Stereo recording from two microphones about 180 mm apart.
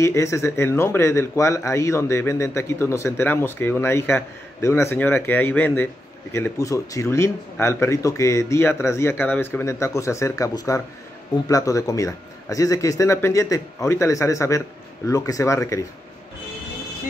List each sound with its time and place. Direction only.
0.0 s speech: 15° left (ahead or behind)